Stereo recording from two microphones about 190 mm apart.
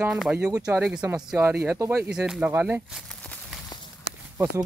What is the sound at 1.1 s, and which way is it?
Speech, 5° right (ahead or behind).